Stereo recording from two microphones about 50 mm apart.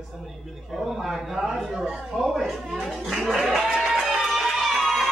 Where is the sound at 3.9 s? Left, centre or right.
Centre.